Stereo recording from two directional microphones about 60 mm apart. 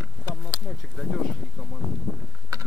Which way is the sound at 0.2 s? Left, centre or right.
Left.